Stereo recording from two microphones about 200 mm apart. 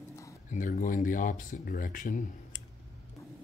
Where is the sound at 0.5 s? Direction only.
40° left (ahead or behind).